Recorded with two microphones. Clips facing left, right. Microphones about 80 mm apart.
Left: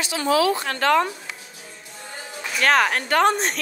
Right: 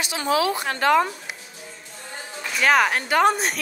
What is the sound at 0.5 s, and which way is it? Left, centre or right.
Speech, centre.